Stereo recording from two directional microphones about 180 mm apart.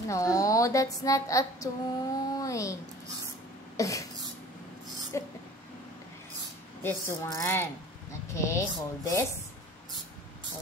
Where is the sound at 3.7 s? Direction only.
20° left (ahead or behind).